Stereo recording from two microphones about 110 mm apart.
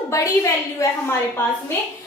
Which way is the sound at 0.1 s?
30° left (ahead or behind).